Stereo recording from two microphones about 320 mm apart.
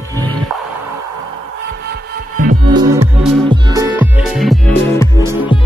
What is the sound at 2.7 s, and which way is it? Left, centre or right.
Music, centre.